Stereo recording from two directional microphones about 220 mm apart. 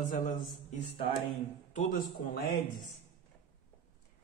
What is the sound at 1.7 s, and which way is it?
Speech, 40° left (ahead or behind).